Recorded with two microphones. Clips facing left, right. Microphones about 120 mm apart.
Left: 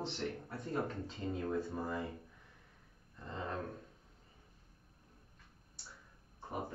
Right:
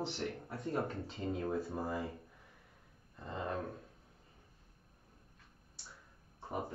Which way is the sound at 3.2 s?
10° right (ahead or behind).